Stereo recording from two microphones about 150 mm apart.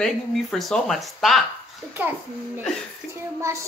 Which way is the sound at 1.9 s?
10° right (ahead or behind).